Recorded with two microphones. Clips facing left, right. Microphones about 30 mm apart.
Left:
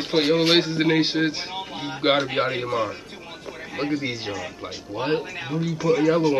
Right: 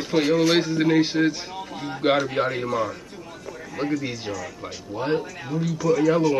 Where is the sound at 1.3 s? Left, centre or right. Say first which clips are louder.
Left 2 dB; left.